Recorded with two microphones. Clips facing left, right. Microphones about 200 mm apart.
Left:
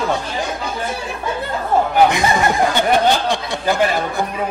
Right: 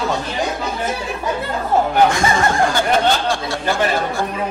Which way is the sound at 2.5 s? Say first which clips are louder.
Left 1 dB; 20° left (ahead or behind).